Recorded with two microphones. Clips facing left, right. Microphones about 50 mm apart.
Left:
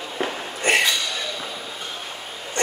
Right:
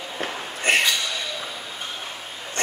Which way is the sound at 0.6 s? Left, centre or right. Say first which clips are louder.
Left 1 dB; centre.